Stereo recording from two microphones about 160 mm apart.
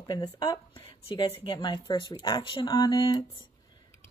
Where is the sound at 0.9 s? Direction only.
35° left (ahead or behind).